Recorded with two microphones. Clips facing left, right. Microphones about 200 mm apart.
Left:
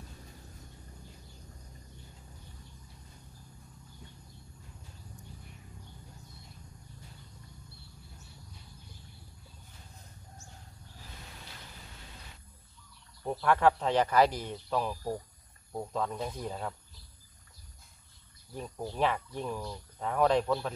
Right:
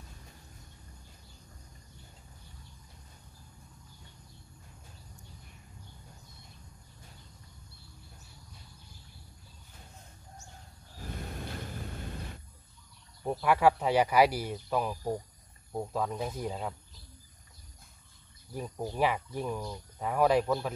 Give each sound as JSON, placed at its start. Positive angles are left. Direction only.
{"t": 11.1, "sound": "vehicle", "side_deg": -55}
{"t": 13.2, "sound": "speech", "side_deg": -10}
{"t": 18.5, "sound": "speech", "side_deg": -10}